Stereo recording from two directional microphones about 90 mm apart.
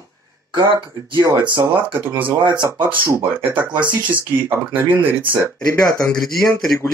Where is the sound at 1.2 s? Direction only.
55° right (ahead or behind).